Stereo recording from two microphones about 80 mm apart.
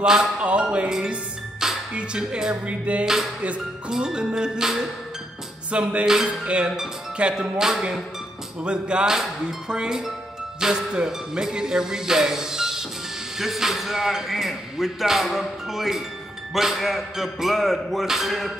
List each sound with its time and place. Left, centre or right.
0.0 s speech: centre
3.4 s music: centre
13.4 s a man's voice: centre